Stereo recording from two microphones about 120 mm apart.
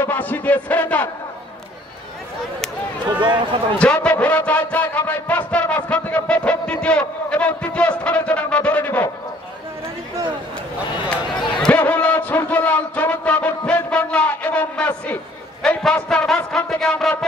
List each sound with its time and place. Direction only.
0.0 s a man's voice: 15° left (ahead or behind)
3.2 s speech: 40° right (ahead or behind)
3.7 s a sound: 10° left (ahead or behind)
11.5 s a sound: 5° left (ahead or behind)
11.8 s music: 10° left (ahead or behind)
15.6 s a man's voice: 10° left (ahead or behind)